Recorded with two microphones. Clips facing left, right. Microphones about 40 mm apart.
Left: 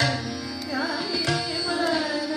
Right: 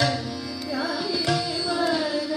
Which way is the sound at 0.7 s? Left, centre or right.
Centre.